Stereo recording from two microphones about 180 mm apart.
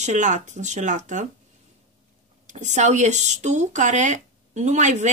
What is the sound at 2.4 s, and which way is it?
Speech, 40° right (ahead or behind).